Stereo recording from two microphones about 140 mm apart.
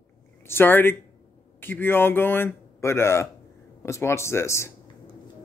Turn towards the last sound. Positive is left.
turn(degrees=20)  # may be behind; listen again after turning